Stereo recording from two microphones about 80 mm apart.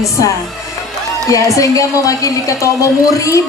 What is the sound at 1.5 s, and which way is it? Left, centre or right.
A man's voice, left.